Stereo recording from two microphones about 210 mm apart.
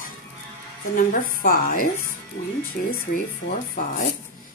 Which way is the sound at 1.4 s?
40° left (ahead or behind).